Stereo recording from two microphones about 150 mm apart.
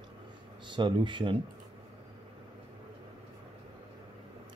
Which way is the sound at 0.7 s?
30° right (ahead or behind).